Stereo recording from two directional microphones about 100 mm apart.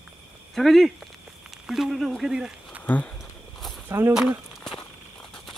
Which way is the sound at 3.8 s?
25° right (ahead or behind).